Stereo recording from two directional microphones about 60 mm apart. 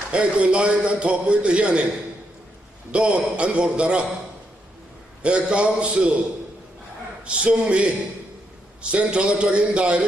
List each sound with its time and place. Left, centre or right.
0.1 s a man's voice: centre
2.9 s a man's voice: centre
5.2 s a man's voice: centre
7.2 s a man's voice: centre